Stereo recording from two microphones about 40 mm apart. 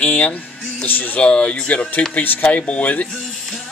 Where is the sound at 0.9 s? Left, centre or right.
Left.